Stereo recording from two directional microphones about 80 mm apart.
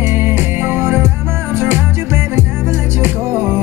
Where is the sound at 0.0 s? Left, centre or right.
Right.